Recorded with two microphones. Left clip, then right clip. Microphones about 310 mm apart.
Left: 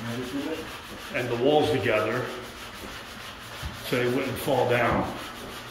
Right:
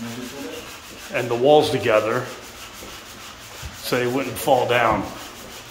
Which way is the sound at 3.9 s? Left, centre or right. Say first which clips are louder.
Right 4 dB; centre.